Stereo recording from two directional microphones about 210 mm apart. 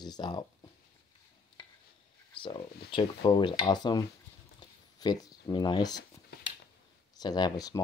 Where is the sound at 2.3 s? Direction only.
25° left (ahead or behind).